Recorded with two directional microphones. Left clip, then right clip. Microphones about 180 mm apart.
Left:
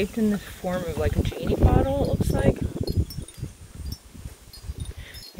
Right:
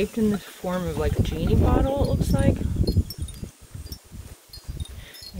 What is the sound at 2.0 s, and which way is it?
Speech, 20° right (ahead or behind).